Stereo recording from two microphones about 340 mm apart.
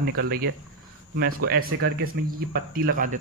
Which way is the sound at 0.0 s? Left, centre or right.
Right.